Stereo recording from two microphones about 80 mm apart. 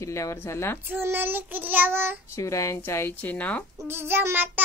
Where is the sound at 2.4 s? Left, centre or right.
Left; by 3.7 s centre.